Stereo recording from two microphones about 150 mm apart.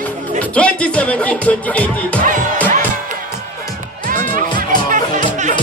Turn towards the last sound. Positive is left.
turn(degrees=-60)  # may be behind; listen again after turning